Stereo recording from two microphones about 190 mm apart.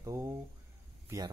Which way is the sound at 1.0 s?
15° right (ahead or behind).